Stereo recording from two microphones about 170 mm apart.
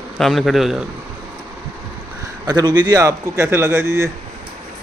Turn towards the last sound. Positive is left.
turn(degrees=-15)  # may be behind; listen again after turning